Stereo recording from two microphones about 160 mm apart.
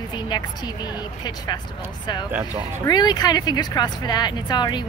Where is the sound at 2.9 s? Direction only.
25° left (ahead or behind).